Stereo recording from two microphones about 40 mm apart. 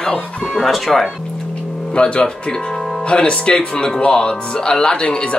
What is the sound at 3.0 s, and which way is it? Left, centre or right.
Speech, left.